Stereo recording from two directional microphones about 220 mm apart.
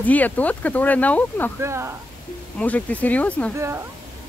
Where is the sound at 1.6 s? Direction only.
10° right (ahead or behind).